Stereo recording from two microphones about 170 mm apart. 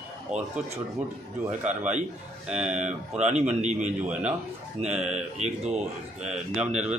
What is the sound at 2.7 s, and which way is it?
Speech, 45° right (ahead or behind).